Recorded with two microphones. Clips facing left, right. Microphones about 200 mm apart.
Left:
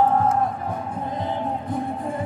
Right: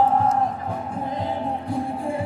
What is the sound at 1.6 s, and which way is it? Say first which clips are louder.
Music: right 1 dB; 10° right (ahead or behind).